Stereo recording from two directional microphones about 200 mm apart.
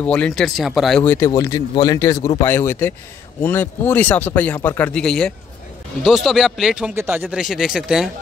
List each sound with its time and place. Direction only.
0.0 s speech: 5° left (ahead or behind)
1.0 s speech: 15° left (ahead or behind); by 8.1 s 5° right (ahead or behind)